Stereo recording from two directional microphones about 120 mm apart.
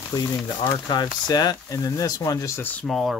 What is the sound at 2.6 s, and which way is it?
Speech, 15° left (ahead or behind).